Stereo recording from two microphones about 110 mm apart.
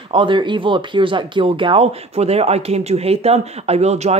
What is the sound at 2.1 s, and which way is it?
A man's voice, 70° right (ahead or behind).